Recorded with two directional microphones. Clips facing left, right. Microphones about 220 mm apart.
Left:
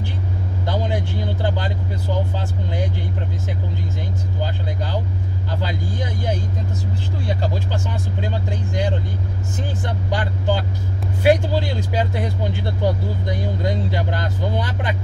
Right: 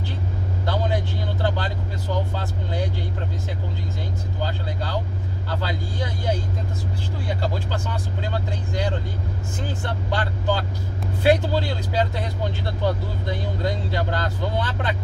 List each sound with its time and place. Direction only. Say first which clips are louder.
0.7 s vehicle: left 1 dB; 15° left (ahead or behind)
2.3 s speech: left 2 dB; 15° left (ahead or behind)
4.4 s speech: left 1 dB; 15° left (ahead or behind)
8.2 s speech: left 3 dB; 15° left (ahead or behind)